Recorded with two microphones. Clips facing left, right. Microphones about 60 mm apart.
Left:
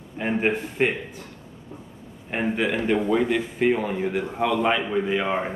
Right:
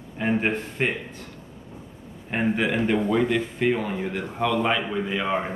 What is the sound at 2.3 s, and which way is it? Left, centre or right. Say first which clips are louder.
Speech: right 1 dB; centre.